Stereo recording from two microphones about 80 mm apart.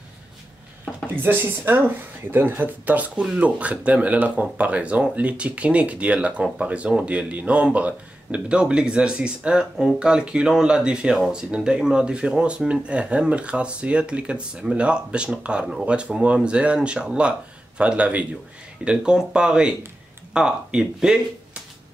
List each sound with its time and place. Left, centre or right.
1.0 s speech: right; by 21.2 s centre